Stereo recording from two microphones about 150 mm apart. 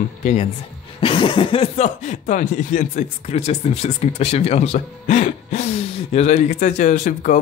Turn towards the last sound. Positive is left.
turn(degrees=60)  # may be behind; listen again after turning